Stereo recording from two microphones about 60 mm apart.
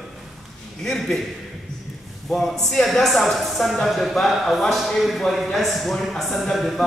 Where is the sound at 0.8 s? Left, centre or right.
Centre.